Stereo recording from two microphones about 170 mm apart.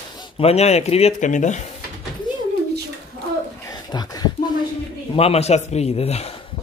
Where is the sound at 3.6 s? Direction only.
20° left (ahead or behind).